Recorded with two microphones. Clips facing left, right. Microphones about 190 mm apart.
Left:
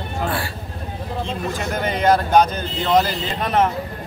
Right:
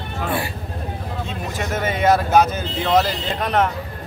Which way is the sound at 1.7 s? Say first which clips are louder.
Even; 5° right (ahead or behind).